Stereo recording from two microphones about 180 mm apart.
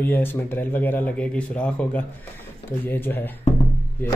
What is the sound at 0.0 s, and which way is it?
Speech, 10° left (ahead or behind).